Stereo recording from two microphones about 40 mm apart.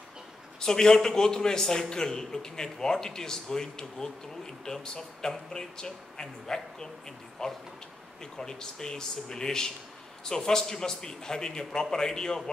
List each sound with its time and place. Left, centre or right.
0.6 s a man's voice: centre